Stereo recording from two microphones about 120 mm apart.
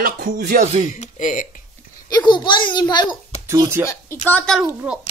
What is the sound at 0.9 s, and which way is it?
Speech, 80° left.